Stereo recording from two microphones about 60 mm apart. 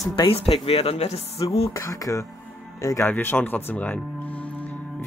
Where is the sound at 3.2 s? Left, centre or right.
Left.